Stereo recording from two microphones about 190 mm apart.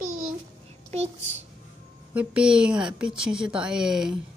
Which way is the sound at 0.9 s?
35° right (ahead or behind).